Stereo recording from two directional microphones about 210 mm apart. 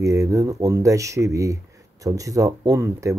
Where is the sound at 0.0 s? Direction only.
15° right (ahead or behind).